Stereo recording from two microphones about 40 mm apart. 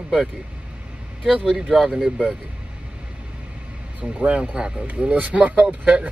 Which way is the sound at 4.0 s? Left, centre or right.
Right.